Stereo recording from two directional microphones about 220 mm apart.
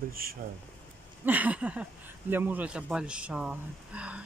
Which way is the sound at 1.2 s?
5° right (ahead or behind).